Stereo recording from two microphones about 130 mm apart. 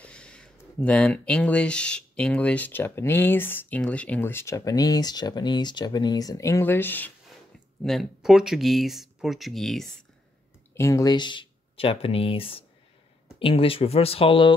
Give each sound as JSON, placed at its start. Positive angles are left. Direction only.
{"t": 0.0, "sound": "a sound", "side_deg": 10}
{"t": 0.7, "sound": "speech", "side_deg": 10}
{"t": 7.8, "sound": "speech", "side_deg": 0}
{"t": 10.7, "sound": "speech", "side_deg": 25}